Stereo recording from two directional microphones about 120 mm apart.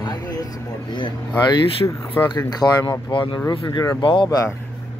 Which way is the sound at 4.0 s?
45° left (ahead or behind).